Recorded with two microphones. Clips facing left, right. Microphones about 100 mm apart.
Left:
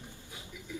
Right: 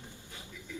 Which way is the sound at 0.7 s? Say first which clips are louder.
Left 2 dB; 20° left (ahead or behind).